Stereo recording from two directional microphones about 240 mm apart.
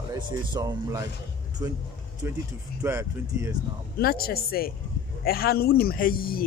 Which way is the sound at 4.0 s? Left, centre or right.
Left.